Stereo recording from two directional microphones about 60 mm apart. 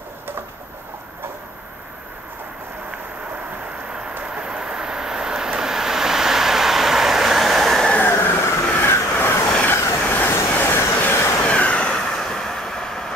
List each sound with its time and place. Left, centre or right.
4.2 s vehicle: centre
8.0 s vehicle: left
9.7 s train: left
11.4 s train: left
12.2 s train: centre